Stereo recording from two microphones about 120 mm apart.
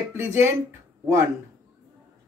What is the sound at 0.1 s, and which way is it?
Speech, 20° right (ahead or behind).